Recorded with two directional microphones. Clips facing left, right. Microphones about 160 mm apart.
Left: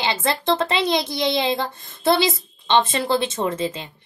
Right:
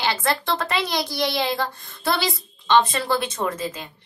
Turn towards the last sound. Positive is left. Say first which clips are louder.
# left 3 dB
turn(degrees=25)  # may be behind; listen again after turning